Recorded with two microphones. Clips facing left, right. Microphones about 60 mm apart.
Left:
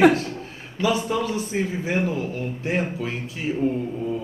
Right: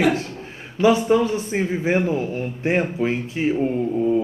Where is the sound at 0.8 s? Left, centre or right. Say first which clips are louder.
Right 6 dB; right.